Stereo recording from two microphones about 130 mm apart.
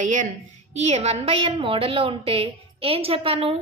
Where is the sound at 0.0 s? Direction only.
75° right (ahead or behind).